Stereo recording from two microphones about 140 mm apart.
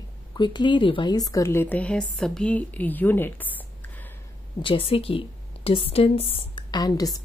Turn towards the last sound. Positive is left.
turn(degrees=25)  # may be behind; listen again after turning